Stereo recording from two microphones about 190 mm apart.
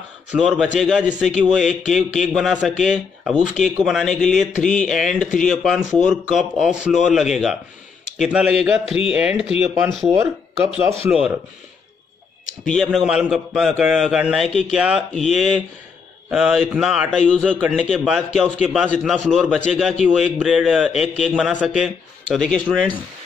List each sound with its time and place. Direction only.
0.3 s a man's voice: centre (ahead or behind)
4.5 s a sound: 40° left (ahead or behind)
4.8 s a man's voice: centre (ahead or behind)
12.6 s a man's voice: centre (ahead or behind)
17.6 s a man's voice: 10° right (ahead or behind)